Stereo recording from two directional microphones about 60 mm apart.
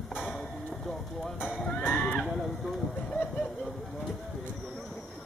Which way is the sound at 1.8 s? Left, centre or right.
Left.